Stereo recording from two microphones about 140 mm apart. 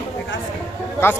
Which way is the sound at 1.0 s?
15° left (ahead or behind).